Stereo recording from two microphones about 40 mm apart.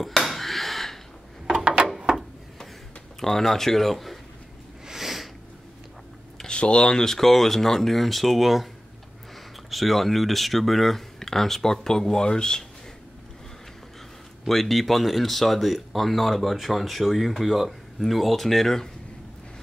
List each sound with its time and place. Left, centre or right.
0.0 s a sound: centre
3.2 s speech: centre
4.8 s sniff: centre
6.4 s speech: left; by 8.6 s centre
9.7 s speech: centre
14.5 s speech: centre